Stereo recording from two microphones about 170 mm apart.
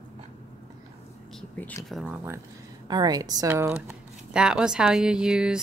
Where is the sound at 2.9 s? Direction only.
25° right (ahead or behind).